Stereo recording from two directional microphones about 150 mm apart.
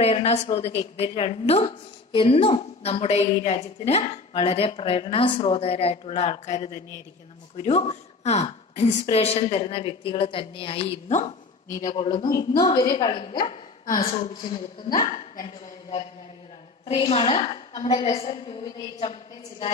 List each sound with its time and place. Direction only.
0.0 s a woman's voice: 45° left (ahead or behind)
12.2 s a woman's voice: 25° left (ahead or behind)
15.0 s a woman's voice: 40° left (ahead or behind)